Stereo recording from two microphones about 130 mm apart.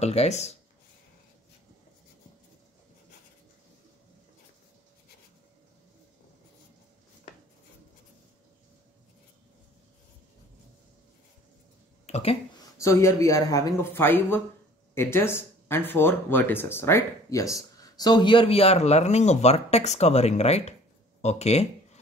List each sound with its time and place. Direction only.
0.0 s speech: 55° left (ahead or behind)
12.1 s speech: 50° left (ahead or behind)
12.5 s speech: 25° left (ahead or behind); by 20.7 s 55° left (ahead or behind)
21.2 s a sound: 55° left (ahead or behind)